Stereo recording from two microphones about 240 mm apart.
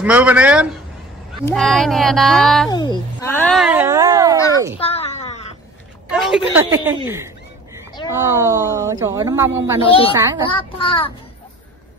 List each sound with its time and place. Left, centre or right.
0.0 s speech: centre
2.7 s speech: centre
4.7 s a sound: left
6.0 s speech: centre
10.5 s a child's voice: left